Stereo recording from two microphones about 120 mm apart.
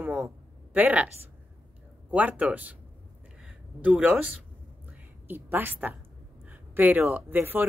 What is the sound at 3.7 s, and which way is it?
Speech, 10° right (ahead or behind).